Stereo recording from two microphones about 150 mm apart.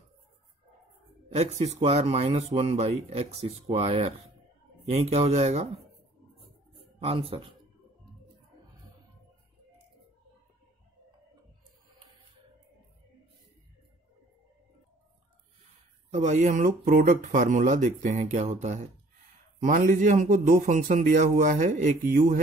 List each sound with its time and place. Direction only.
1.3 s speech: 45° right (ahead or behind)
7.0 s speech: 40° right (ahead or behind)
16.1 s speech: 55° right (ahead or behind)